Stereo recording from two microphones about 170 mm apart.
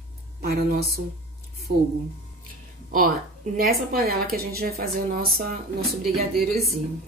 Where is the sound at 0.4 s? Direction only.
65° right (ahead or behind).